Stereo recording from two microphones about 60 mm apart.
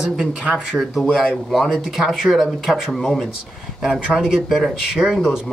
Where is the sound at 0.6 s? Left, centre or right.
Centre.